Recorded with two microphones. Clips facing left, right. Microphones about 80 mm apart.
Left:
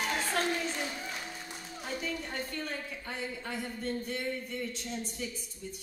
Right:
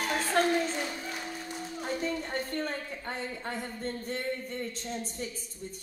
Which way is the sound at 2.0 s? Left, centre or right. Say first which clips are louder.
Right 3 dB; right.